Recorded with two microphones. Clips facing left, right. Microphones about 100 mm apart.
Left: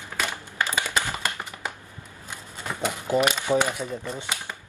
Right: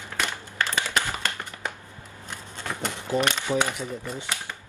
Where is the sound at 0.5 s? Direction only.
10° left (ahead or behind).